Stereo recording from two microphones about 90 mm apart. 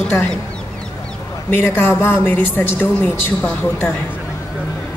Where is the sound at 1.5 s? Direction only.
25° left (ahead or behind).